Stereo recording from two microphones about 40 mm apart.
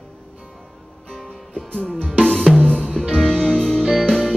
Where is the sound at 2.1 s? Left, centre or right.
Left.